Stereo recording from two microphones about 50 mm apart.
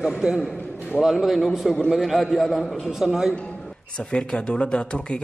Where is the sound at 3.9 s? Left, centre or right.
Centre.